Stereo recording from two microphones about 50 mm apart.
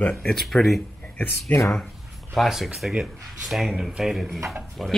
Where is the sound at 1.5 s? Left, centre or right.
Left.